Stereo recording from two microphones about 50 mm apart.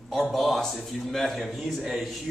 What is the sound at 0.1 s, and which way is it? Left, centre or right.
A man's voice, centre.